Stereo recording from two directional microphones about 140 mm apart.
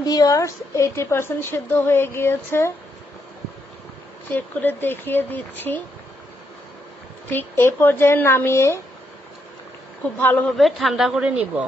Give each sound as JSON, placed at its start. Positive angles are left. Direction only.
{"t": 0.0, "sound": "a woman's voice", "side_deg": 25}
{"t": 4.3, "sound": "a woman's voice", "side_deg": 15}
{"t": 7.2, "sound": "a woman's voice", "side_deg": 15}
{"t": 10.2, "sound": "a woman's voice", "side_deg": 15}
{"t": 10.6, "sound": "a woman's voice", "side_deg": 0}